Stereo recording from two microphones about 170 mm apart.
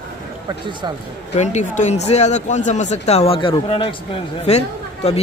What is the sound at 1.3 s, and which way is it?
Speech, 40° left (ahead or behind).